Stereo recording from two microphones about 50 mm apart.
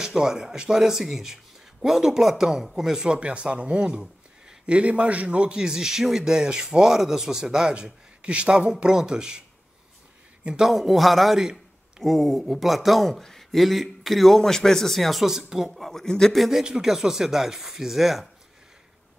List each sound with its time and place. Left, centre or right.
0.0 s a man's voice: centre
3.2 s a man's voice: right
10.6 s a man's voice: centre
15.7 s speech: centre
16.3 s a man's voice: centre